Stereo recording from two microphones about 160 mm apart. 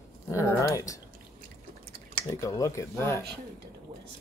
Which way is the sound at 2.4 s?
20° left (ahead or behind).